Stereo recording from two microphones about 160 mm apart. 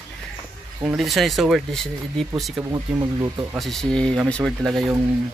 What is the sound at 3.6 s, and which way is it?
Speech, centre (ahead or behind).